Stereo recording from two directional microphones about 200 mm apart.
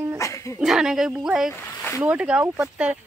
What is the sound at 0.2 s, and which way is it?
Dog, 15° left (ahead or behind).